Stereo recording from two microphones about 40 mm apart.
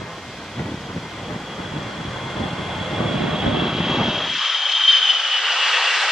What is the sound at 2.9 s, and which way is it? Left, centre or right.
Vehicle, centre.